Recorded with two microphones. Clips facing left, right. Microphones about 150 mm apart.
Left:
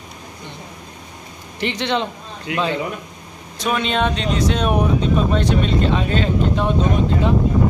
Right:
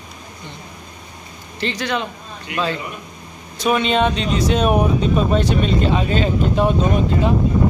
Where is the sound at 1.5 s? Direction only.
20° left (ahead or behind).